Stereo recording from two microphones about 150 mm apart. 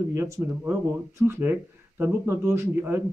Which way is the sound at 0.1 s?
20° right (ahead or behind).